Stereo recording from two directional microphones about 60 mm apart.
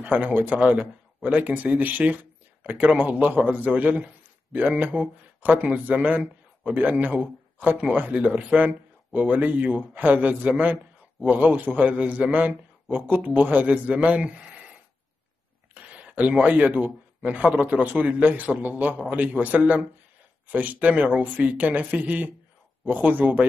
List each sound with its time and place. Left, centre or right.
0.0 s a man's voice: right
15.7 s speech: right